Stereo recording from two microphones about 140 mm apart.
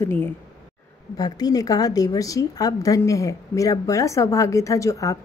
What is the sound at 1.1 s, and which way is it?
A woman's voice, 30° left (ahead or behind).